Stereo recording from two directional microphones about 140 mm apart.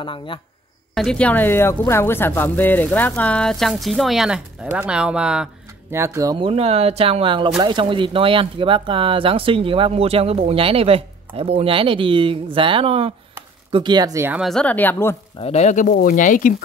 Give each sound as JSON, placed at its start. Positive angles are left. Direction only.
{"t": 0.0, "sound": "speech", "side_deg": 35}
{"t": 0.9, "sound": "a woman's voice", "side_deg": 5}
{"t": 5.9, "sound": "speech", "side_deg": -20}
{"t": 6.3, "sound": "speech", "side_deg": -40}
{"t": 14.4, "sound": "a woman's voice", "side_deg": 5}
{"t": 15.4, "sound": "speech", "side_deg": 55}